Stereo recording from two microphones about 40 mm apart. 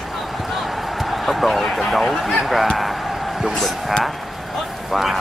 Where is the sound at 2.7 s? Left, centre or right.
Centre.